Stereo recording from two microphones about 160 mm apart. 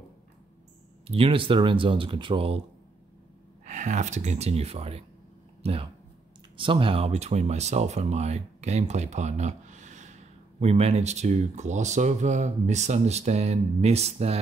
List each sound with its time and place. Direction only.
1.0 s speech: 35° right (ahead or behind)
3.6 s speech: 45° right (ahead or behind)